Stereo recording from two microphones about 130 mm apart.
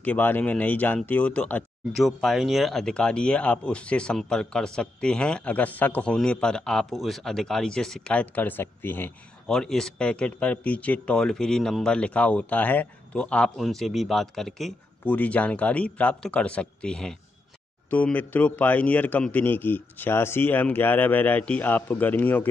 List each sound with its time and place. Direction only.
0.0 s speech: 10° left (ahead or behind)
9.5 s speech: 5° left (ahead or behind)